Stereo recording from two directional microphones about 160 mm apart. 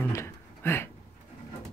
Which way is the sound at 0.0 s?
15° left (ahead or behind).